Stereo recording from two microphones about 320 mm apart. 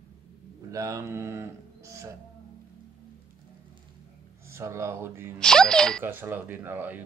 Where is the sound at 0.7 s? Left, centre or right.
Centre.